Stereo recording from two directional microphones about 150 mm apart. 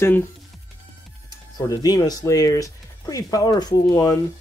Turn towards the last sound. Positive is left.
turn(degrees=20)  # may be behind; listen again after turning